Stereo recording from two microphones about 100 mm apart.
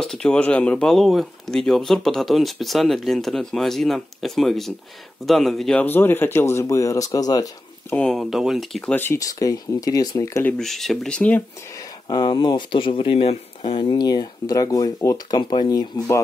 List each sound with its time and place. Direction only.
0.0 s speech: 5° left (ahead or behind)
5.8 s speech: 20° left (ahead or behind); by 7.5 s 40° left (ahead or behind)
7.9 s speech: 10° left (ahead or behind)
8.2 s speech: 5° right (ahead or behind)
8.9 s speech: 20° left (ahead or behind)
9.2 s speech: 35° left (ahead or behind)
10.6 s speech: centre (ahead or behind)
11.7 s speech: 50° left (ahead or behind); by 13.8 s 65° left (ahead or behind)
13.8 s speech: 45° left (ahead or behind)